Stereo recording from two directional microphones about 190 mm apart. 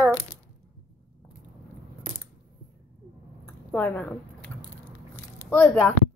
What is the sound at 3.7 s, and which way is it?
Speech, 10° left (ahead or behind).